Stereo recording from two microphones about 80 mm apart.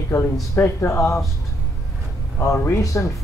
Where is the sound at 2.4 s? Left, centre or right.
Left.